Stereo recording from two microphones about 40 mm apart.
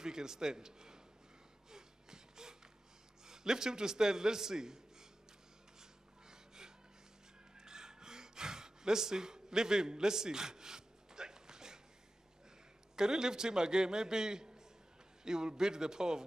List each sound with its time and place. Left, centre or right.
0.0 s a man's voice: centre
1.7 s a sound: centre
3.3 s a man's voice: centre
5.8 s a sound: centre
7.5 s gasp: centre
12.9 s a man's voice: centre